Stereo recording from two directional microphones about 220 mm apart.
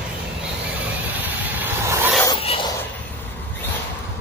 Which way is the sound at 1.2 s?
10° right (ahead or behind).